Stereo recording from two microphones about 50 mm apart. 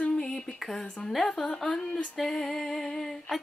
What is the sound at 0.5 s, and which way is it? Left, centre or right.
Speech, centre.